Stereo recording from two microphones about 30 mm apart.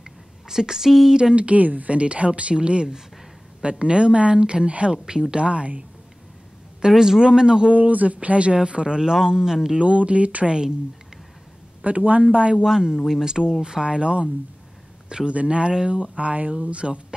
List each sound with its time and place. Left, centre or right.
0.0 s a sound: centre
1.3 s speech: right
2.0 s a woman's voice: right
4.9 s speech: right
5.3 s a woman's voice: right
7.0 s speech: right
7.7 s speech: right
8.7 s a woman's voice: right
9.1 s speech: centre
9.8 s speech: right
11.8 s speech: right
12.6 s speech: centre
13.8 s a woman's voice: right
16.0 s speech: right